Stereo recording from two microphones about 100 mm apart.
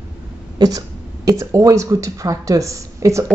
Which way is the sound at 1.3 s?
35° right (ahead or behind).